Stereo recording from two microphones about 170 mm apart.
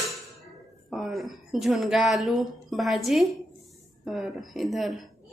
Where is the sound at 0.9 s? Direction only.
Centre (ahead or behind).